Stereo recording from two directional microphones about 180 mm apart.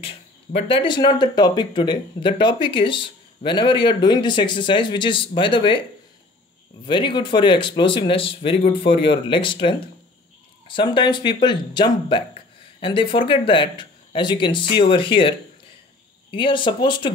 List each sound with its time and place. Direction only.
0.6 s speech: 30° left (ahead or behind)
6.9 s speech: 25° left (ahead or behind)